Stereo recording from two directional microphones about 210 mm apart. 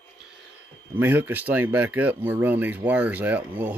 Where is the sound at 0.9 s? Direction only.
10° right (ahead or behind).